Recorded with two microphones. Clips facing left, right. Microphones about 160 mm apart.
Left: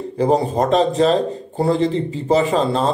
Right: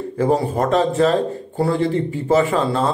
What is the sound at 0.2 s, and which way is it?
A man's voice, 20° left (ahead or behind).